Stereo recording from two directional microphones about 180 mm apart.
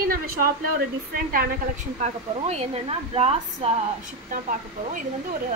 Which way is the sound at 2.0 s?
35° right (ahead or behind).